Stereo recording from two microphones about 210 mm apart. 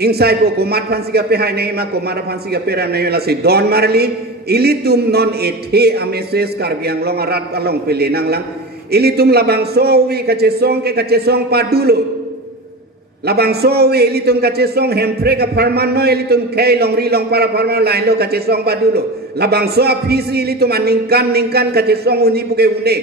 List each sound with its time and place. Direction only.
0.0 s a man's voice: 50° right (ahead or behind)
13.3 s a man's voice: 50° right (ahead or behind)